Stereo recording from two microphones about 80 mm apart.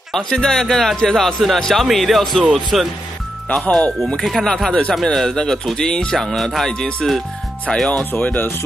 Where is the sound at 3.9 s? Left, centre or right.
Centre.